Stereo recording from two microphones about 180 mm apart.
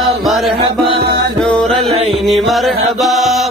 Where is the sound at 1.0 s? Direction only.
65° right (ahead or behind).